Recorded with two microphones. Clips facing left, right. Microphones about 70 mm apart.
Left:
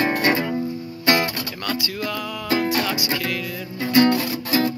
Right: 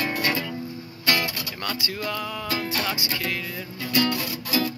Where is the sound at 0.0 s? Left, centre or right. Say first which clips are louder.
Left 6 dB; left.